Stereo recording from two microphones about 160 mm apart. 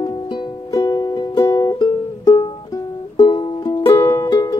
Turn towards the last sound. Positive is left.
turn(degrees=25)  # may be behind; listen again after turning